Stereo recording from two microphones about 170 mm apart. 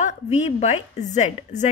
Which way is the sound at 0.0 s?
40° left (ahead or behind).